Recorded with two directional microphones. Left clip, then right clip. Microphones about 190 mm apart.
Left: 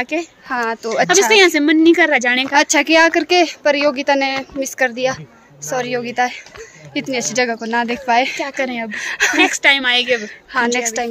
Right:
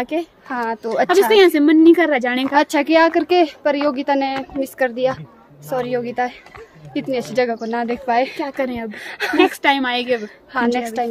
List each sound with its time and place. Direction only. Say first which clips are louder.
0.0 s a woman's voice: left 1 dB; 20° right (ahead or behind)
0.5 s a woman's voice: left 4 dB; 5° left (ahead or behind)
1.3 s a woman's voice: left 1 dB; 20° right (ahead or behind)
2.5 s a woman's voice: left 1 dB; centre (ahead or behind)
8.4 s a woman's voice: left 2 dB; 25° right (ahead or behind)
8.9 s a woman's voice: left 6 dB; 5° left (ahead or behind)
9.4 s a woman's voice: left 1 dB; 25° right (ahead or behind)
10.5 s a woman's voice: left 2 dB; centre (ahead or behind)